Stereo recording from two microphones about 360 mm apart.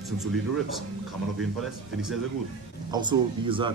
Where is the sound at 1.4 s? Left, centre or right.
Centre.